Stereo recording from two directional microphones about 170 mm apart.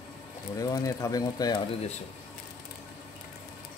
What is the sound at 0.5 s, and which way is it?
Speech, 20° left (ahead or behind).